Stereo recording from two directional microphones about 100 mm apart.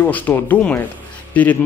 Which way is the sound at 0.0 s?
20° left (ahead or behind).